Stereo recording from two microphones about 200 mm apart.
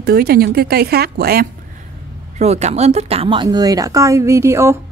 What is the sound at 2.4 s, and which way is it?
Speech, 35° right (ahead or behind).